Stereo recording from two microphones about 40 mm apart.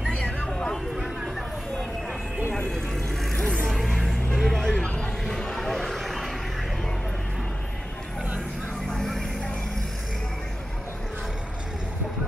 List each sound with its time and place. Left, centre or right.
0.5 s vehicle: centre
2.5 s vehicle: centre
3.3 s music: left
3.6 s music: centre
4.4 s a sound: centre
8.9 s vehicle: centre